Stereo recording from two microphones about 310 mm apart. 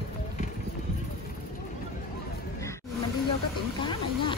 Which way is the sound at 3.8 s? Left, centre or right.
Centre.